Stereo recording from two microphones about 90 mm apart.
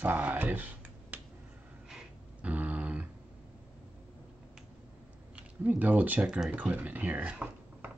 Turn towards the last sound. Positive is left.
turn(degrees=-15)  # may be behind; listen again after turning